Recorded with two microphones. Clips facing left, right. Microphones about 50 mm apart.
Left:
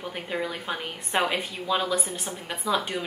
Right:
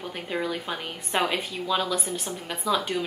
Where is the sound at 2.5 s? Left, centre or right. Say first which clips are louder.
Right 1 dB; centre.